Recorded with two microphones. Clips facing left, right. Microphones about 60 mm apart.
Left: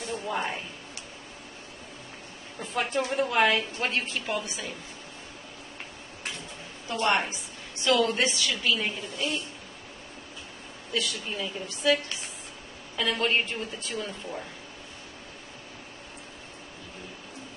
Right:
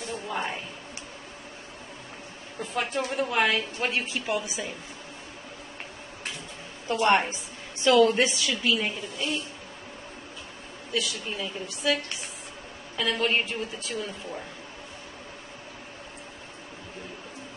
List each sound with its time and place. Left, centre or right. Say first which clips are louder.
0.0 s a sound: left 1 dB; centre
2.6 s a woman's voice: left 1 dB; centre
7.1 s a woman's voice: right 3 dB; right
8.5 s a woman's voice: right 1 dB; centre
10.9 s a woman's voice: right 1 dB; centre